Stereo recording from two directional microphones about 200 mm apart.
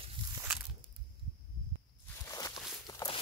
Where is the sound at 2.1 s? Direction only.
15° left (ahead or behind).